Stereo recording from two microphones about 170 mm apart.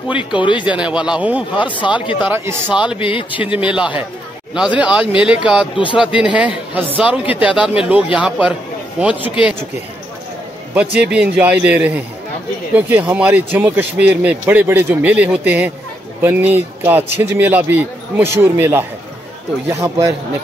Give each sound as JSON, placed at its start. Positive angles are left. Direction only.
{"t": 0.2, "sound": "speech", "side_deg": 30}
{"t": 0.7, "sound": "speech", "side_deg": -5}
{"t": 1.6, "sound": "speech", "side_deg": 30}
{"t": 2.2, "sound": "speech", "side_deg": -15}
{"t": 3.0, "sound": "speech", "side_deg": 30}
{"t": 3.3, "sound": "speech", "side_deg": -10}
{"t": 10.7, "sound": "speech", "side_deg": -10}